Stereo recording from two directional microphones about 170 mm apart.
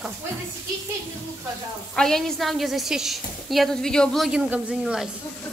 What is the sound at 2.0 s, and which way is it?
A woman's voice, 5° left (ahead or behind).